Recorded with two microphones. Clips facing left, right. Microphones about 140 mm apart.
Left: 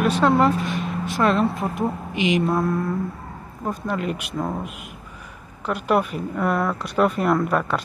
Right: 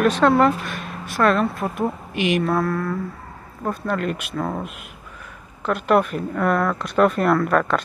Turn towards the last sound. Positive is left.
turn(degrees=15)  # may be behind; listen again after turning